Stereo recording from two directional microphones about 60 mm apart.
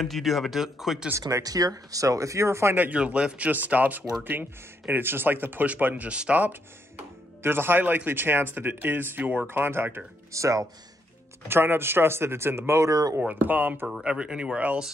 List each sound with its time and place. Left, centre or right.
0.0 s speech: centre
1.4 s speech: right
2.7 s speech: right
3.0 s speech: centre
6.4 s speech: right
9.5 s speech: right
10.3 s speech: right
11.4 s speech: right
13.3 s speech: right
14.0 s speech: centre